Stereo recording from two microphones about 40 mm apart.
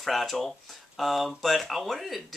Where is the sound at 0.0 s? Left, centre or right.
Centre.